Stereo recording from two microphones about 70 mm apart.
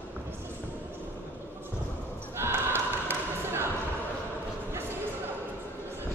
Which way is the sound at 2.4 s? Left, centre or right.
Right.